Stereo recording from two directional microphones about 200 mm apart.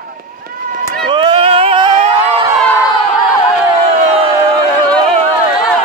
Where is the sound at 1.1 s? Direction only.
25° right (ahead or behind).